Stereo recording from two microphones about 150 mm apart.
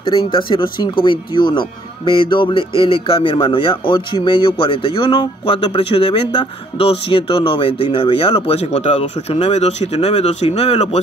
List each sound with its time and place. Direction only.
0.0 s speech: 35° left (ahead or behind)